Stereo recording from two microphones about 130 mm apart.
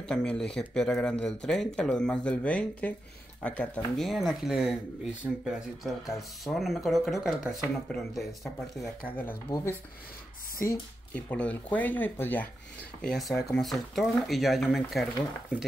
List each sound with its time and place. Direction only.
0.1 s speech: 5° left (ahead or behind)
9.0 s speech: 15° left (ahead or behind)
11.1 s speech: 10° left (ahead or behind)
13.0 s speech: centre (ahead or behind)